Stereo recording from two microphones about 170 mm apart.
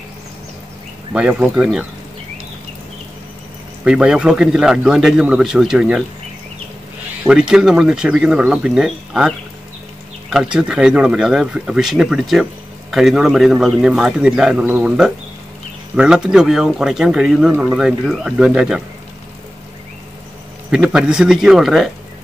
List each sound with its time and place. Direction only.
1.1 s speech: 5° right (ahead or behind)
3.8 s speech: 5° right (ahead or behind)
7.2 s speech: 5° right (ahead or behind)
10.3 s speech: 5° right (ahead or behind)
20.7 s speech: 5° right (ahead or behind)